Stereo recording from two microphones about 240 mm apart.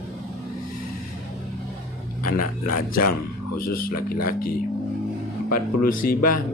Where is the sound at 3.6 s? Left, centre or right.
Left.